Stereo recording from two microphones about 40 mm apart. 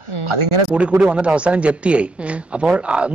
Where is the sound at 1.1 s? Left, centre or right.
Right.